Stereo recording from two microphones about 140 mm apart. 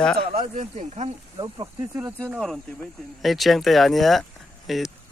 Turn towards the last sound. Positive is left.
turn(degrees=0)  # may be behind; listen again after turning